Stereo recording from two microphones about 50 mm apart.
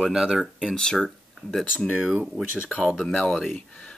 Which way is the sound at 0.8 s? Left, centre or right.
Centre.